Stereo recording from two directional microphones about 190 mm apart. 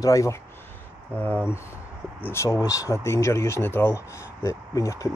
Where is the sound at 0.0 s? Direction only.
15° left (ahead or behind).